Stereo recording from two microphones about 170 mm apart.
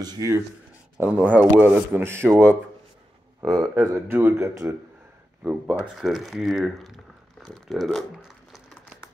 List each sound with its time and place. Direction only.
0.0 s speech: 15° right (ahead or behind); by 8.0 s centre (ahead or behind)